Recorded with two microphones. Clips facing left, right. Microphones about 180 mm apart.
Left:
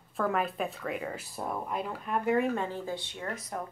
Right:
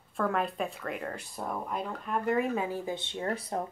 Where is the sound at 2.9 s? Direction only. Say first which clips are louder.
Right 3 dB; 25° right (ahead or behind).